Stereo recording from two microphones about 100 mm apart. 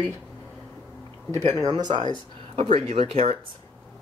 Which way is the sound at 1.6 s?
50° right (ahead or behind).